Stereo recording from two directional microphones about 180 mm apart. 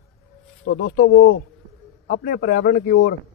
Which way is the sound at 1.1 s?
90° left.